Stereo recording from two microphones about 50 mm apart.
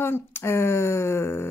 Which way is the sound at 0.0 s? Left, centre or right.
Left.